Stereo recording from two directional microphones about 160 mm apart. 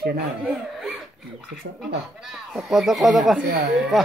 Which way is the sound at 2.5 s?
Centre (ahead or behind).